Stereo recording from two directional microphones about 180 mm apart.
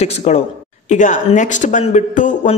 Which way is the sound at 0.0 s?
35° left (ahead or behind).